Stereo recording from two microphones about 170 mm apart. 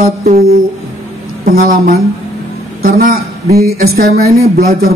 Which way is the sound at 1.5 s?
60° right (ahead or behind).